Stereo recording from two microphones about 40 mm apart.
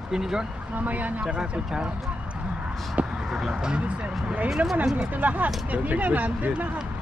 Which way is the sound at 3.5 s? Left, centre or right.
Right.